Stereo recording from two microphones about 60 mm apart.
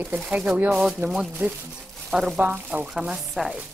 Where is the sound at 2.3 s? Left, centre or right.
Right.